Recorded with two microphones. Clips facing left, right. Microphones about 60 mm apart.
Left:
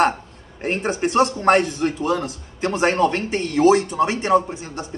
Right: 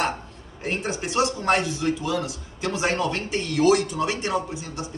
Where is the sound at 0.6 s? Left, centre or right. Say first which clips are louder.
Left 6 dB; left.